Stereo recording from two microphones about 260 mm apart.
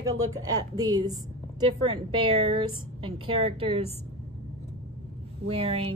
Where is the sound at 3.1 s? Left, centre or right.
Centre.